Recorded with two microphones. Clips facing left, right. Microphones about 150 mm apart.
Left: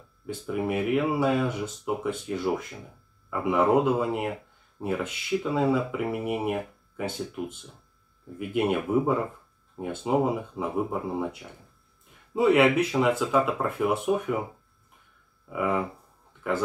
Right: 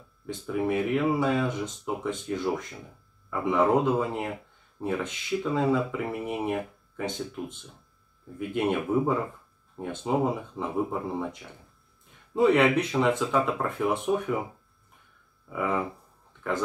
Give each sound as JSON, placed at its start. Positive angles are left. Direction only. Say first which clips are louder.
{"t": 0.3, "sound": "speech", "louder": "right 1 dB", "side_deg": 5}
{"t": 15.5, "sound": "speech", "louder": "left 2 dB", "side_deg": 5}